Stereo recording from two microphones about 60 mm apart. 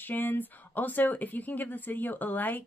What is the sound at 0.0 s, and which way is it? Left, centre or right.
Speech, left.